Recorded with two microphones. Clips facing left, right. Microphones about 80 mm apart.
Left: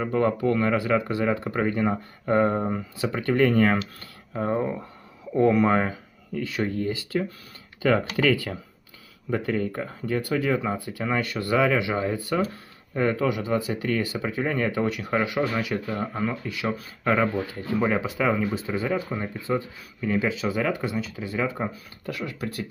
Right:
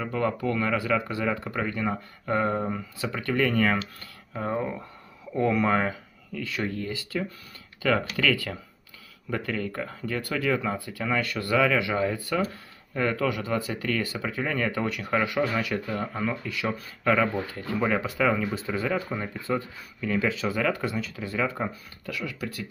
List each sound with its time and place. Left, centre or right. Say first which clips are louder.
0.0 s speech: left 4 dB; left
4.3 s speech: left 3 dB; centre
5.3 s speech: left 4 dB; centre
9.6 s speech: left 3 dB; left
22.0 s speech: left 2 dB; left